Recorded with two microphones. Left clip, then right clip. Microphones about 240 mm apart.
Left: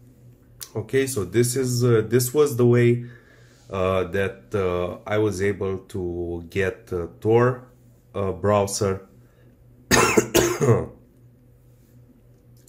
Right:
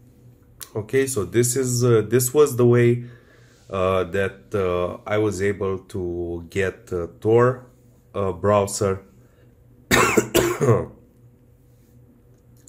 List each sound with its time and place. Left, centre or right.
0.6 s speech: centre
9.8 s cough: centre